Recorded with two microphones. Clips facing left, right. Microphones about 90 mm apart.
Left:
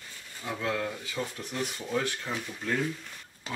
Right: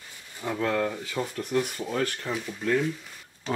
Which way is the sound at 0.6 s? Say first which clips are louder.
Right 5 dB; 50° right (ahead or behind).